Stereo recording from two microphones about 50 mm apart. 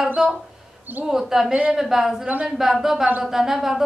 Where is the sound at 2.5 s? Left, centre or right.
Centre.